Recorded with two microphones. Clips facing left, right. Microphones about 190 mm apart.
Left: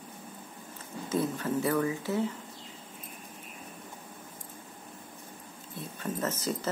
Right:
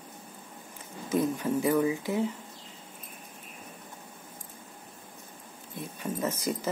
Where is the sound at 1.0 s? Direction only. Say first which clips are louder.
Right 3 dB; 15° right (ahead or behind).